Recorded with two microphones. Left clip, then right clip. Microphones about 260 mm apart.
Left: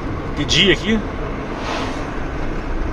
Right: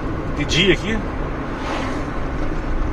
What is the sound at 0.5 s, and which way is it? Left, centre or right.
Speech, left.